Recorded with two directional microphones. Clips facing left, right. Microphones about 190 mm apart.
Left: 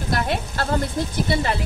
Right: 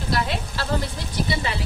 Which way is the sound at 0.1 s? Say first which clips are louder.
Left 2 dB; 50° left (ahead or behind).